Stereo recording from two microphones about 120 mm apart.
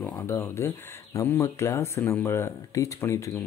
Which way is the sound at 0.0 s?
20° left (ahead or behind).